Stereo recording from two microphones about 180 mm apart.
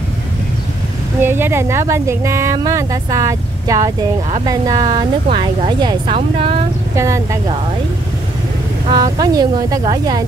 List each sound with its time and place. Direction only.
1.2 s a woman's voice: 15° right (ahead or behind); by 6.6 s 30° right (ahead or behind)
7.0 s a woman's voice: 15° right (ahead or behind)
8.9 s a woman's voice: 20° right (ahead or behind)